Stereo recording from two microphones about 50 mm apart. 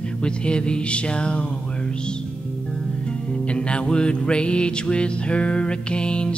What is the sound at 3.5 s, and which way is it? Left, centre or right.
Music, centre.